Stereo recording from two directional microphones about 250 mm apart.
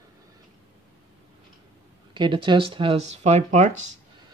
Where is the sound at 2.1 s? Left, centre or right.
Centre.